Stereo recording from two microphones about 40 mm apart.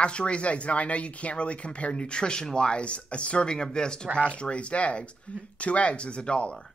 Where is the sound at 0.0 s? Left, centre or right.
Left.